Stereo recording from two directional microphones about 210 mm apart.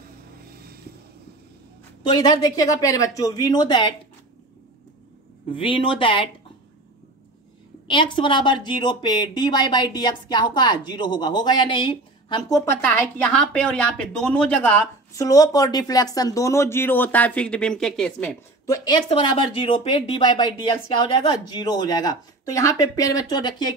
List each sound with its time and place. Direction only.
0.5 s a sound: 45° right (ahead or behind)
2.0 s speech: 20° left (ahead or behind)
5.6 s speech: 25° left (ahead or behind)
7.9 s speech: 25° left (ahead or behind); by 18.4 s 5° left (ahead or behind)
18.7 s speech: 20° left (ahead or behind)